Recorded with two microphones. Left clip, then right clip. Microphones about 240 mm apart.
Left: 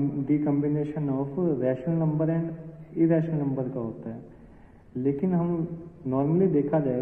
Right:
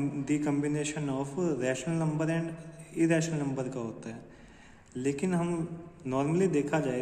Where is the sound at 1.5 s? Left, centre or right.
Centre.